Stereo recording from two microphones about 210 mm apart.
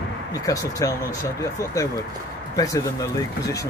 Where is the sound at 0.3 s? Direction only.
15° left (ahead or behind).